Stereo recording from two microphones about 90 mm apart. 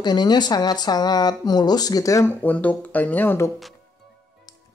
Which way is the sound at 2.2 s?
20° left (ahead or behind).